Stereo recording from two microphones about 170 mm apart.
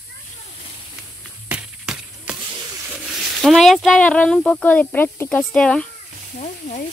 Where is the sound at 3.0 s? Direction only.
Centre (ahead or behind).